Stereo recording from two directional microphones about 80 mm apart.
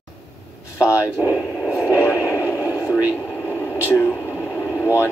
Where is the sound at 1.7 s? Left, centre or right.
Left.